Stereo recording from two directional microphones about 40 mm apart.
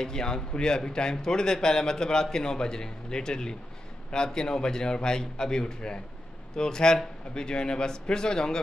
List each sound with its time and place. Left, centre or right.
0.0 s a man's voice: centre